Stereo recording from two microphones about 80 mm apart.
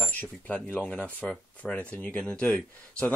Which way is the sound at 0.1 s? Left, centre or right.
Centre.